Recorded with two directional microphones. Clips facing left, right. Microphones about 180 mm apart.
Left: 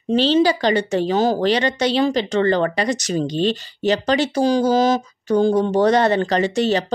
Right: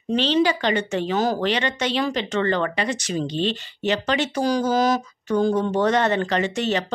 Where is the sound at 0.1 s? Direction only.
35° left (ahead or behind).